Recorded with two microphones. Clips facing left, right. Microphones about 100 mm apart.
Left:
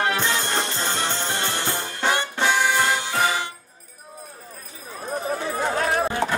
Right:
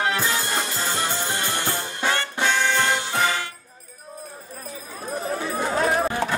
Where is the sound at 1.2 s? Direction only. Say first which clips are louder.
Even; 20° left (ahead or behind).